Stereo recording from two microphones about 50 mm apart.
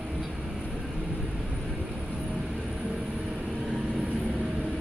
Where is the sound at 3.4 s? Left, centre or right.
Centre.